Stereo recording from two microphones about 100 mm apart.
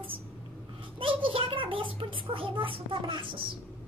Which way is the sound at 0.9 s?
60° right (ahead or behind).